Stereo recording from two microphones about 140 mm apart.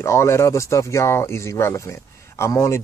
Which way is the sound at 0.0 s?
20° left (ahead or behind).